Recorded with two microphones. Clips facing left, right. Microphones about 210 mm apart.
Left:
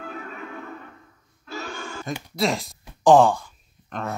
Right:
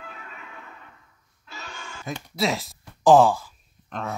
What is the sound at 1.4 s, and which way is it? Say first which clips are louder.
Music: left 8 dB; 45° left (ahead or behind).